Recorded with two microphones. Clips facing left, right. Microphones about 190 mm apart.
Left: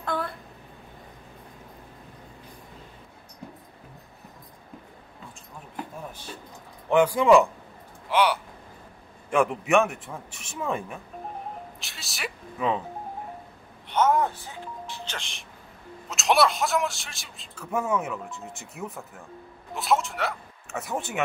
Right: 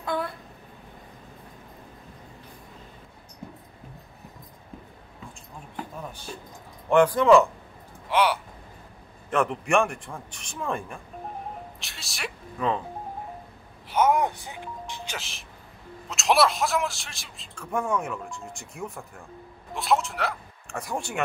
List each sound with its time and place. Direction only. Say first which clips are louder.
0.0 s a sound: right 1 dB; centre (ahead or behind)
6.9 s speech: right 1 dB; 10° left (ahead or behind)
8.1 s speech: even; centre (ahead or behind)
11.8 s music: left 1 dB; centre (ahead or behind)
13.8 s speech: even; 10° right (ahead or behind)
15.1 s a man's voice: right 1 dB; 5° right (ahead or behind)